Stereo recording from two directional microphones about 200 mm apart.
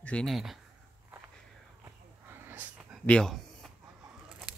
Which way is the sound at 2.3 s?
10° right (ahead or behind).